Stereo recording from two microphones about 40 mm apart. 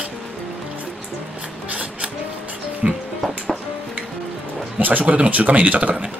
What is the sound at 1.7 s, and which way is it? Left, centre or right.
Music, right.